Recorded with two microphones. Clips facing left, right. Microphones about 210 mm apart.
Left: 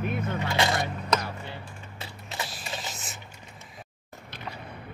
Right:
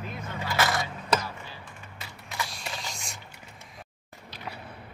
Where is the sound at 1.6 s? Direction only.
30° left (ahead or behind).